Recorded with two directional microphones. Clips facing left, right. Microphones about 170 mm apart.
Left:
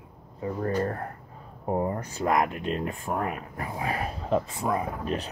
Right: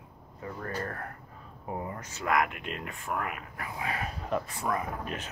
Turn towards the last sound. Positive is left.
turn(degrees=30)  # may be behind; listen again after turning